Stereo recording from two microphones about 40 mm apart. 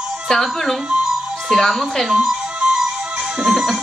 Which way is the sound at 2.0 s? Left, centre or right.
Centre.